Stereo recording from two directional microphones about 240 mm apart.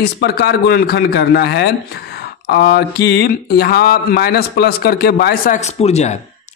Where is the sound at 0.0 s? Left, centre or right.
Left.